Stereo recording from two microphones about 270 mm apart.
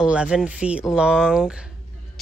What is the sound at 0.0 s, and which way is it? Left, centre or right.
Speech, centre.